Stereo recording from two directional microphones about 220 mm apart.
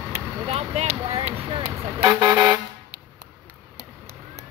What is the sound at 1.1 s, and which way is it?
Speech, 25° right (ahead or behind).